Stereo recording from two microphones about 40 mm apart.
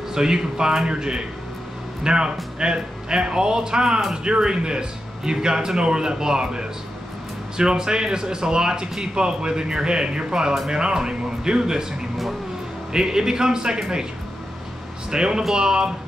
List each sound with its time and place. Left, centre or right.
0.1 s speech: centre
12.9 s a man's voice: centre
15.0 s speech: centre